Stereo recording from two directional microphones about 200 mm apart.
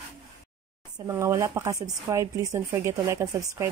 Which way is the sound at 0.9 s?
15° right (ahead or behind).